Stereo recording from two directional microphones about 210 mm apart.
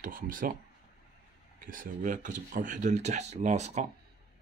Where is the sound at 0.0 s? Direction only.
40° right (ahead or behind).